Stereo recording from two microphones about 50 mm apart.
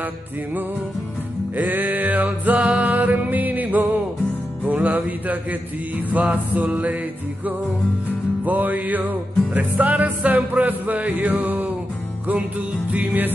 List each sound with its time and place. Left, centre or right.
1.6 s music: right
8.5 s music: right